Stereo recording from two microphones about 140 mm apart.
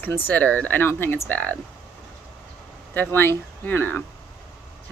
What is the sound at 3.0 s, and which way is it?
Speech, 15° left (ahead or behind).